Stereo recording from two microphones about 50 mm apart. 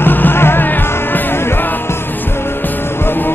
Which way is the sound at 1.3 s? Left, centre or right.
Left.